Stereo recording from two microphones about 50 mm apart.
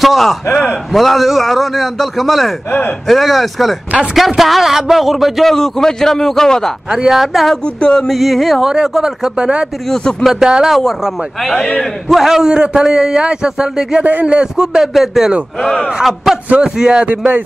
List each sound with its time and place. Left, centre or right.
0.0 s a man's voice: centre
6.9 s a man's voice: centre
7.6 s a sound: centre
8.1 s a man's voice: centre
8.6 s a man's voice: centre
9.8 s a sound: centre
10.4 s a man's voice: centre
11.4 s a sound: centre
11.8 s a man's voice: centre
16.6 s a man's voice: centre